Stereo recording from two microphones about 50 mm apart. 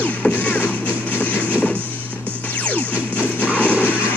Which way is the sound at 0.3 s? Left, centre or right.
Left.